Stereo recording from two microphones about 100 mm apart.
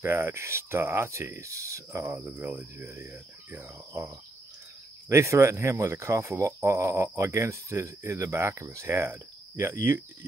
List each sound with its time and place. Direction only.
0.0 s speech: 25° right (ahead or behind)
5.1 s speech: 30° right (ahead or behind)